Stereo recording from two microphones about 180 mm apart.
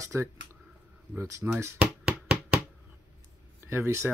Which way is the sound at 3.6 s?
15° right (ahead or behind).